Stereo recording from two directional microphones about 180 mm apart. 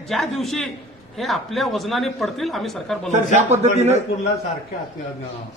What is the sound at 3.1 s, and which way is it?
Speech, 40° right (ahead or behind).